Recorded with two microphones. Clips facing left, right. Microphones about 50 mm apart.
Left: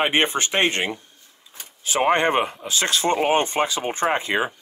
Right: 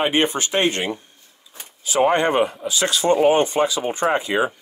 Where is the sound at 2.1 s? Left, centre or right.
Left.